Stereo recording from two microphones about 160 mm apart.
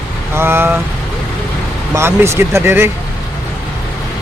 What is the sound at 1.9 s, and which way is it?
Speech, 15° right (ahead or behind).